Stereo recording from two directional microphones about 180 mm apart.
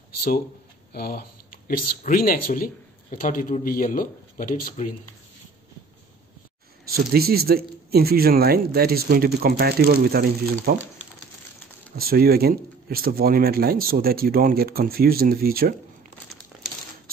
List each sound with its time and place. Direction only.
0.9 s speech: 55° left (ahead or behind)
6.9 s speech: 60° right (ahead or behind)
12.0 s speech: 55° right (ahead or behind)